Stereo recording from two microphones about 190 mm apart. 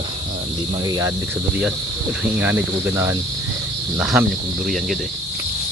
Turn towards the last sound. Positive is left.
turn(degrees=-5)  # may be behind; listen again after turning